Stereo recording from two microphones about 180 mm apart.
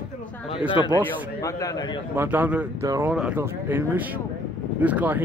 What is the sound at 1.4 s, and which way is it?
Speech, 20° left (ahead or behind).